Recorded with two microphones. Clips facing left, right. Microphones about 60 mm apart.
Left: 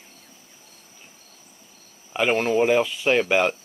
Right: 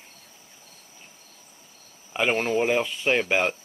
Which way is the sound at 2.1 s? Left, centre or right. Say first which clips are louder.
Left 3 dB; centre.